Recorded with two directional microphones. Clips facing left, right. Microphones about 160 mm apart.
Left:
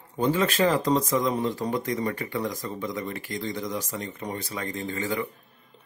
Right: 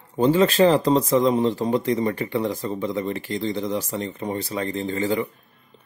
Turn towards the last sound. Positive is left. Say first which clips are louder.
# right 6 dB
turn(degrees=-30)  # may be behind; listen again after turning